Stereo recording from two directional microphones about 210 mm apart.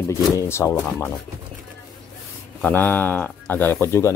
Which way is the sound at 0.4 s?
15° left (ahead or behind).